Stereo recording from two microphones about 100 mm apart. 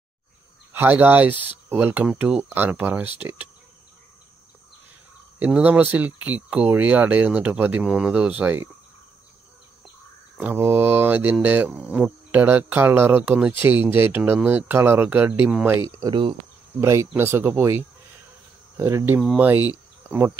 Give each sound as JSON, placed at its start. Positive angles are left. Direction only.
{"t": 0.7, "sound": "speech", "side_deg": -15}
{"t": 5.4, "sound": "speech", "side_deg": -15}
{"t": 10.3, "sound": "speech", "side_deg": -15}
{"t": 15.6, "sound": "speech", "side_deg": -30}
{"t": 19.3, "sound": "speech", "side_deg": -15}
{"t": 19.7, "sound": "cricket", "side_deg": -20}